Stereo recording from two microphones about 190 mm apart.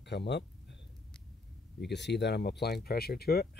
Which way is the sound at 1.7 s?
65° left (ahead or behind).